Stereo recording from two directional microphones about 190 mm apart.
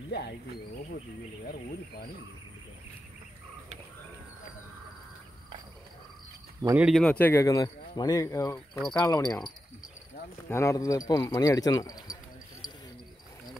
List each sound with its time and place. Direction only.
6.6 s speech: 10° right (ahead or behind)
6.9 s speech: 5° left (ahead or behind); by 9.5 s 20° left (ahead or behind)
10.5 s speech: 15° left (ahead or behind)